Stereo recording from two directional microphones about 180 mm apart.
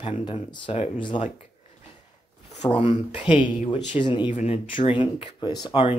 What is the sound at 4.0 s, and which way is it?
Speech, 25° left (ahead or behind).